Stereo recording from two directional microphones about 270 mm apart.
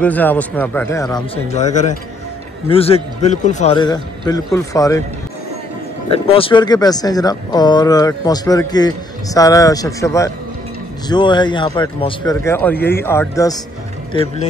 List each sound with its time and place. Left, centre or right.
0.0 s a man's voice: centre
6.0 s speech: left